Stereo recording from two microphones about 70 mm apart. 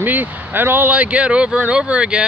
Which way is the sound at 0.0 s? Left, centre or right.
Right.